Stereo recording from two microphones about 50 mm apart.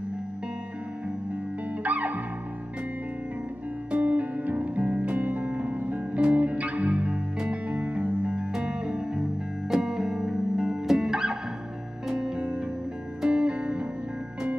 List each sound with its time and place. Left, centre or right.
1.8 s music: right
3.9 s music: right
8.5 s music: centre